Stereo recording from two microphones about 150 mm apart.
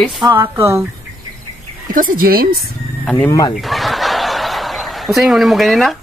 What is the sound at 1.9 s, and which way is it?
Speech, 70° right (ahead or behind).